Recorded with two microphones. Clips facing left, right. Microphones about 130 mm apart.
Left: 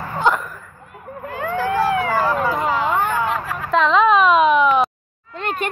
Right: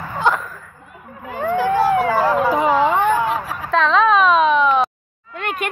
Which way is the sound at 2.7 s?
90° right.